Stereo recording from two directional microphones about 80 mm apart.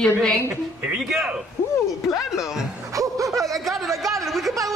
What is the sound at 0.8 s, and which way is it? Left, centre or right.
A man's voice, centre.